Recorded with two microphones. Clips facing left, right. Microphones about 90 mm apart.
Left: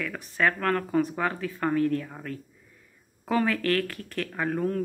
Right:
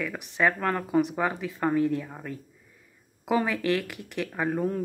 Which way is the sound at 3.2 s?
15° right (ahead or behind).